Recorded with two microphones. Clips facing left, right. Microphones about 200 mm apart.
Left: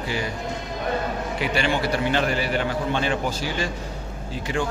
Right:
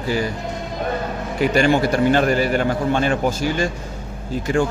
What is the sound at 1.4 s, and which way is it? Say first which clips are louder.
A man's voice: right 8 dB; 45° right (ahead or behind).